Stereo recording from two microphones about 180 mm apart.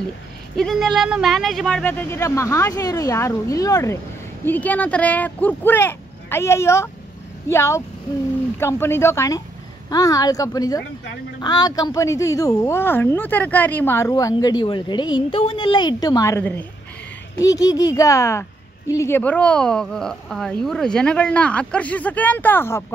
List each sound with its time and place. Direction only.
0.6 s a woman's voice: centre (ahead or behind)